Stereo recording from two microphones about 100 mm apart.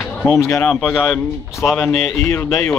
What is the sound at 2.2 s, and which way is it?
Speech, 25° left (ahead or behind).